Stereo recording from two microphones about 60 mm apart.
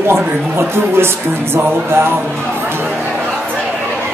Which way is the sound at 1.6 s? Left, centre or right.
Right.